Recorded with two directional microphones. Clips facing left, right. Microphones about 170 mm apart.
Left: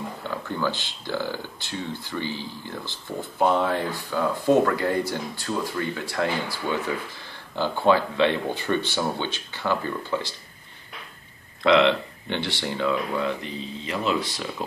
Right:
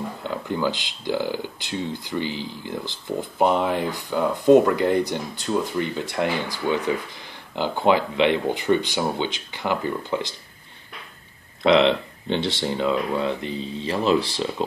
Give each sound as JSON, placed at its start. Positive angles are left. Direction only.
{"t": 0.5, "sound": "speech", "side_deg": -15}
{"t": 11.6, "sound": "speech", "side_deg": -25}